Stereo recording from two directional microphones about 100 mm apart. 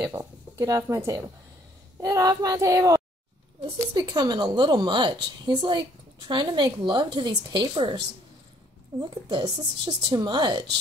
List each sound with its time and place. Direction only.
0.0 s a woman's voice: 30° right (ahead or behind); by 8.0 s 50° right (ahead or behind)
9.1 s a woman's voice: 45° right (ahead or behind)